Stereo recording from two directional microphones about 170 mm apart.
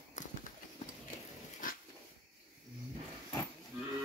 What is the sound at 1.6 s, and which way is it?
Dog, 50° left (ahead or behind).